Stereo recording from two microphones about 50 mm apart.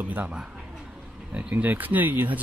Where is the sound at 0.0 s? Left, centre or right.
Right.